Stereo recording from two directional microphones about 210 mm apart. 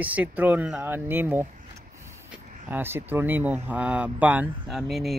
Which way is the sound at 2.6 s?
10° right (ahead or behind).